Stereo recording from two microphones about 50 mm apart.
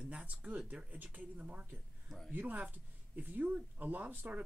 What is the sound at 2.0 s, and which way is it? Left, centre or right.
Speech, centre.